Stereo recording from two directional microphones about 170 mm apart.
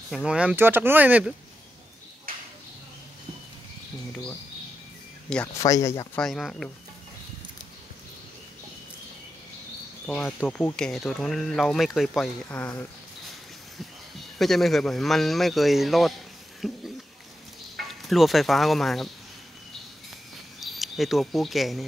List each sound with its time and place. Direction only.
0.1 s speech: 5° right (ahead or behind)
5.6 s speech: 20° left (ahead or behind)
6.1 s speech: centre (ahead or behind)
10.0 s speech: 5° left (ahead or behind)
14.4 s speech: centre (ahead or behind)
20.6 s speech: centre (ahead or behind)